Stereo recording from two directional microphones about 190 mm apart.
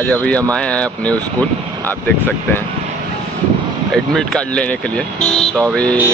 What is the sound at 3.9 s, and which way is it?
Speech, 5° left (ahead or behind).